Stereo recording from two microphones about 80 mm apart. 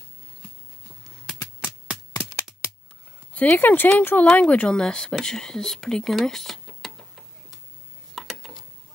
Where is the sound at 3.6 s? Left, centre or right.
Left; by 7.2 s centre.